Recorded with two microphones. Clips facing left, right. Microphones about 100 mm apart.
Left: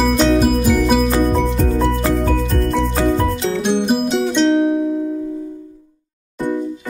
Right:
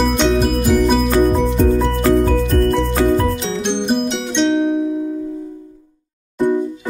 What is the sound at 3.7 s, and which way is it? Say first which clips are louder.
Music: left 1 dB; 5° left (ahead or behind).